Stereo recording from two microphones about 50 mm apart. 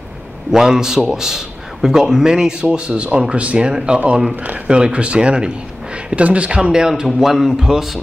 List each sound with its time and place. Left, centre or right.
0.5 s a man's voice: centre